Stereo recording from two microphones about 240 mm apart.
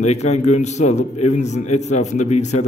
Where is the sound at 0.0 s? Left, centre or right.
Left.